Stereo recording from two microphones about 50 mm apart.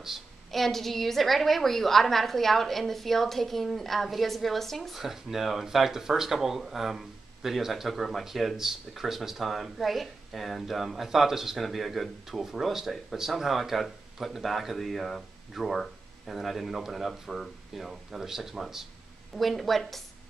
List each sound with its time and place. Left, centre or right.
0.5 s a woman's voice: centre